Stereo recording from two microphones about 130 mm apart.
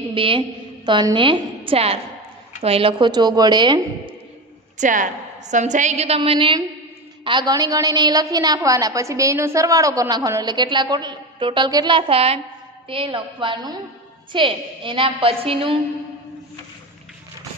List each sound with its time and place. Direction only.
0.1 s a woman's voice: 45° right (ahead or behind)
4.7 s a woman's voice: 75° right (ahead or behind); by 15.7 s 45° right (ahead or behind)